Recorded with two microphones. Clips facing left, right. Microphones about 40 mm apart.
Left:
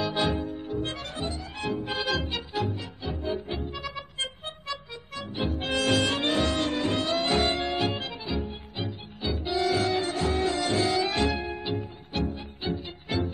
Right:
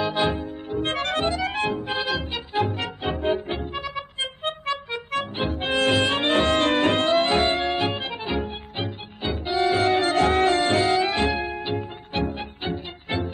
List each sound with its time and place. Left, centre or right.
0.0 s music: right
0.7 s music: right
2.0 s music: centre
2.7 s music: right
4.4 s music: right
5.7 s music: right
7.2 s music: right
7.7 s music: centre
8.1 s music: right
10.8 s music: right